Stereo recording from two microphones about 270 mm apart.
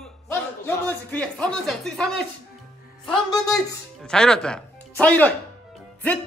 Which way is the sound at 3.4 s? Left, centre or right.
Centre.